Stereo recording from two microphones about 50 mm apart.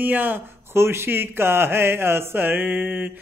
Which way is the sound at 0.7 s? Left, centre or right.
Right.